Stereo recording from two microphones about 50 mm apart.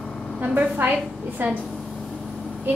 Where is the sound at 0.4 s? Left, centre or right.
Right.